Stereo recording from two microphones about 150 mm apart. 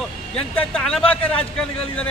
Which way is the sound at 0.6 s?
5° left (ahead or behind).